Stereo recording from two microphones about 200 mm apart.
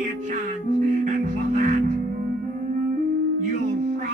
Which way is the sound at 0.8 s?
40° right (ahead or behind).